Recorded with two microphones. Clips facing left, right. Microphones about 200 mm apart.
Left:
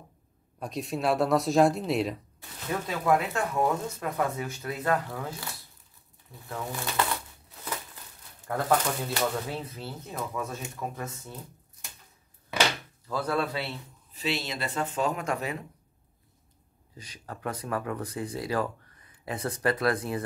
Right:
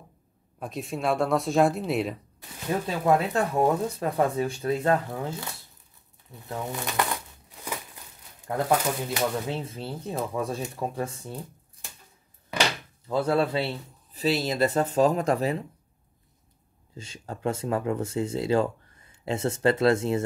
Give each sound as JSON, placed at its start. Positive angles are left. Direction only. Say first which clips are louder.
{"t": 0.6, "sound": "speech", "louder": "even", "side_deg": 0}
{"t": 2.9, "sound": "speech", "louder": "right 2 dB", "side_deg": -30}
{"t": 6.5, "sound": "speech", "louder": "right 2 dB", "side_deg": -20}
{"t": 7.6, "sound": "crumpling", "louder": "right 1 dB", "side_deg": -15}
{"t": 8.5, "sound": "speech", "louder": "right 2 dB", "side_deg": -15}
{"t": 13.1, "sound": "speech", "louder": "right 5 dB", "side_deg": -25}
{"t": 16.9, "sound": "speech", "louder": "right 4 dB", "side_deg": -25}